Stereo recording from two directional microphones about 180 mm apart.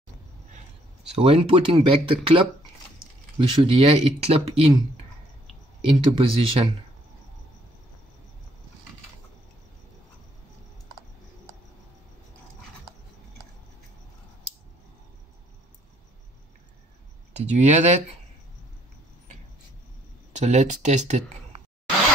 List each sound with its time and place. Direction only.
1.1 s speech: 35° right (ahead or behind)
5.8 s speech: 30° right (ahead or behind)
17.5 s speech: 40° right (ahead or behind)
20.3 s speech: 40° right (ahead or behind)